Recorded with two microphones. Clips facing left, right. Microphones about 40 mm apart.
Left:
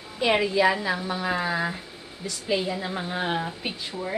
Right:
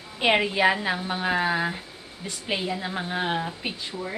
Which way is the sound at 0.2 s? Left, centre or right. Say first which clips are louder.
Even; right.